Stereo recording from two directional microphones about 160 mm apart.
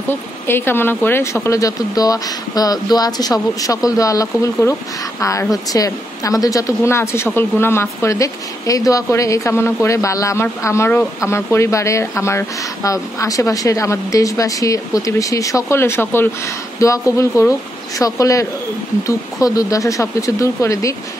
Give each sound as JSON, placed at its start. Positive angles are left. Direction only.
{"t": 0.5, "sound": "a woman's voice", "side_deg": 15}